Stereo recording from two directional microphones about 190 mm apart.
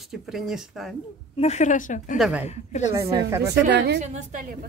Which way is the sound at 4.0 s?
40° right (ahead or behind).